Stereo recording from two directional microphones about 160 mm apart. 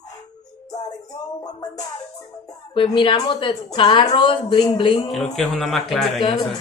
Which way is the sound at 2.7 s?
30° left (ahead or behind).